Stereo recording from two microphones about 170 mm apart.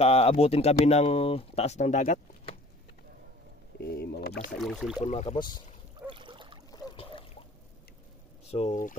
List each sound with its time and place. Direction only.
0.0 s speech: 35° left (ahead or behind)
3.8 s rowboat: 65° left (ahead or behind)
4.6 s speech: centre (ahead or behind)
5.0 s speech: 40° left (ahead or behind)
5.9 s a sound: 30° right (ahead or behind)
6.7 s trickle: 30° left (ahead or behind)
8.5 s speech: 40° left (ahead or behind)